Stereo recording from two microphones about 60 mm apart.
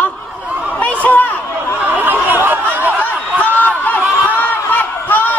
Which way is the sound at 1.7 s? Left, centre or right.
Right.